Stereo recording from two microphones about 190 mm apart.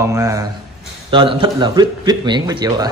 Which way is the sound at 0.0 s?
15° right (ahead or behind).